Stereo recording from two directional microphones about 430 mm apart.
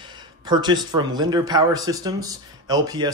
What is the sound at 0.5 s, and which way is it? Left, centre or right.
Speech, centre.